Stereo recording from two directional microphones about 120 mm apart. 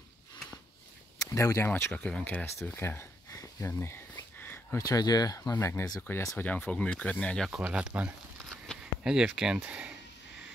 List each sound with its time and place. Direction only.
1.3 s speech: 25° left (ahead or behind)
1.9 s speech: 10° left (ahead or behind)
4.7 s speech: 30° left (ahead or behind); by 7.4 s 10° left (ahead or behind)
7.6 s speech: 10° right (ahead or behind)